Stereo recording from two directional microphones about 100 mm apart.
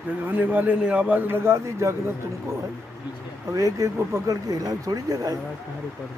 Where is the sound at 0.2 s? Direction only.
15° right (ahead or behind).